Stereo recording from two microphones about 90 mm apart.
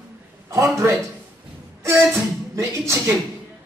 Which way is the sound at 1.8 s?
30° right (ahead or behind).